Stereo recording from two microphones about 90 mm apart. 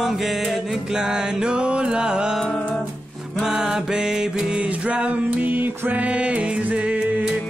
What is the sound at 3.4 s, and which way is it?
Music, 5° right (ahead or behind).